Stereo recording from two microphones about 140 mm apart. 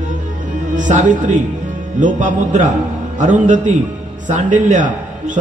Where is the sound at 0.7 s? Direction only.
65° right (ahead or behind).